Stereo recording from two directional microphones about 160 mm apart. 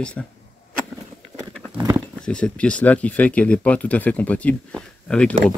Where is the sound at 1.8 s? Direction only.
25° right (ahead or behind).